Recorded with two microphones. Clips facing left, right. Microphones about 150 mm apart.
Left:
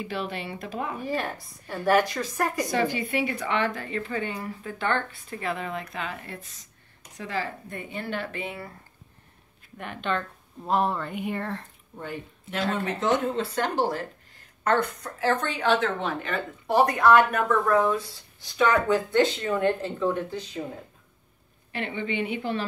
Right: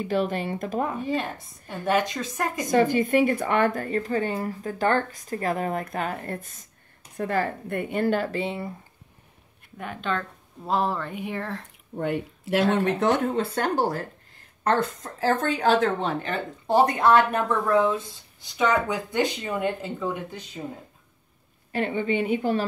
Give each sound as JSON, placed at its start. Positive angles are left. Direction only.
{"t": 0.0, "sound": "speech", "side_deg": -45}
{"t": 1.0, "sound": "a woman's voice", "side_deg": -20}
{"t": 2.6, "sound": "speech", "side_deg": -45}
{"t": 9.8, "sound": "speech", "side_deg": 0}
{"t": 12.0, "sound": "speech", "side_deg": -70}
{"t": 13.6, "sound": "speech", "side_deg": -35}
{"t": 21.7, "sound": "speech", "side_deg": -45}